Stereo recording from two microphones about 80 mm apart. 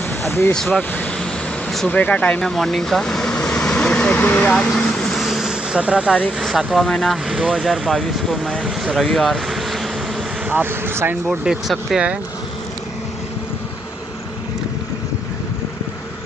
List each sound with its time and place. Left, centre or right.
0.2 s speech: left
0.7 s vehicle: centre
1.9 s speech: centre
2.4 s vehicle: centre
4.5 s vehicle: centre
6.4 s speech: centre
10.5 s speech: right
11.2 s speech: centre